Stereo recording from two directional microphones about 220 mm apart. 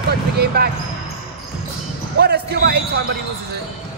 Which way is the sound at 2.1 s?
45° right (ahead or behind).